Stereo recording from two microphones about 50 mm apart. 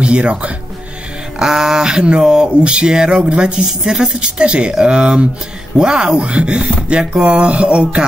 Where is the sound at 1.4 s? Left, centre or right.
Centre.